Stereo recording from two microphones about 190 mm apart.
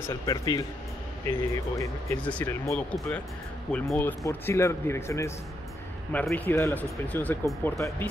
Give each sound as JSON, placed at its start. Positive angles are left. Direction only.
{"t": 0.1, "sound": "speech", "side_deg": 20}